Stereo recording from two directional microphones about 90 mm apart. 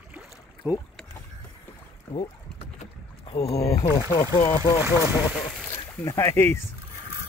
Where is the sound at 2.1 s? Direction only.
25° left (ahead or behind).